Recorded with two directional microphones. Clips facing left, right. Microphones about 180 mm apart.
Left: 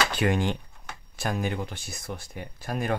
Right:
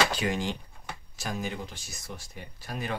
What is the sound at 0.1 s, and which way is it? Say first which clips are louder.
Speech: left 4 dB; 55° left (ahead or behind).